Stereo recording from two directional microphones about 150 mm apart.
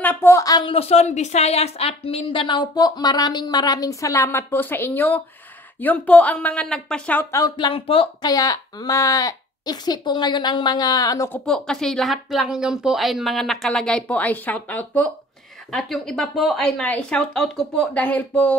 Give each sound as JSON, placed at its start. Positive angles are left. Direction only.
{"t": 0.0, "sound": "a woman's voice", "side_deg": 15}
{"t": 8.3, "sound": "a woman's voice", "side_deg": 25}
{"t": 11.3, "sound": "a woman's voice", "side_deg": 5}